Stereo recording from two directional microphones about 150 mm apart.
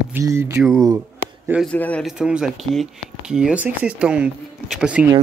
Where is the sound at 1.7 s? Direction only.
10° left (ahead or behind).